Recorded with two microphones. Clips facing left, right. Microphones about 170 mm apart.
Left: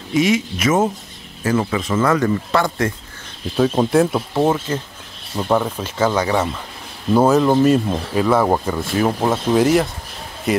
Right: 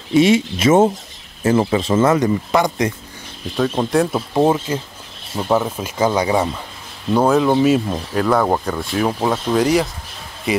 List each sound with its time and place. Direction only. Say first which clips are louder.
0.1 s a man's voice: right 4 dB; 30° right (ahead or behind)
3.5 s speech: left 2 dB; 5° left (ahead or behind)
4.3 s speech: right 2 dB; 15° right (ahead or behind)
7.2 s speech: left 1 dB; centre (ahead or behind)